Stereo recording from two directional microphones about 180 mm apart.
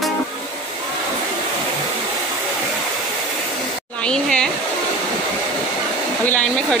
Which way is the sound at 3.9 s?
5° left (ahead or behind).